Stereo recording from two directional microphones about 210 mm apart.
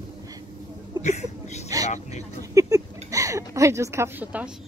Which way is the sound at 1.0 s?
30° left (ahead or behind).